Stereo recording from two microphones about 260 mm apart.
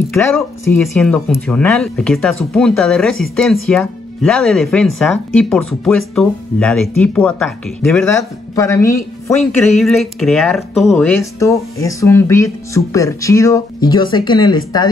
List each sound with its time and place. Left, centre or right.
0.1 s speech: centre
9.4 s speech: centre